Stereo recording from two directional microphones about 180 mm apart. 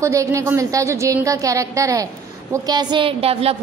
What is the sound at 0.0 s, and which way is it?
A woman's voice, 15° right (ahead or behind).